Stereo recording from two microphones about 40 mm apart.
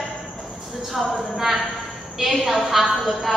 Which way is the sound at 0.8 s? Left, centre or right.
Centre.